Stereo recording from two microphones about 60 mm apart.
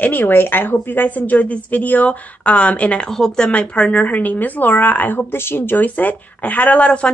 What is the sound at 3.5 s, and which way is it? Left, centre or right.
Speech, left.